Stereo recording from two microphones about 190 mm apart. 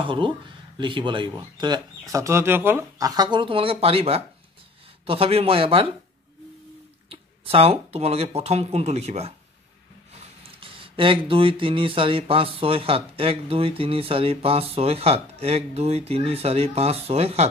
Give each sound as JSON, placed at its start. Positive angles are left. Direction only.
{"t": 0.0, "sound": "speech", "side_deg": -25}
{"t": 7.1, "sound": "speech", "side_deg": -30}
{"t": 10.6, "sound": "speech", "side_deg": -25}